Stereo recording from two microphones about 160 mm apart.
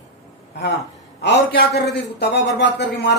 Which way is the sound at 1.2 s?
90° left.